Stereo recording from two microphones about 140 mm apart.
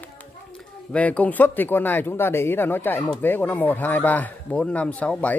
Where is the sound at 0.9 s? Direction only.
10° left (ahead or behind).